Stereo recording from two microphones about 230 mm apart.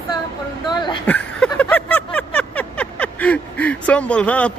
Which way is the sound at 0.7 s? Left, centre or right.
Centre.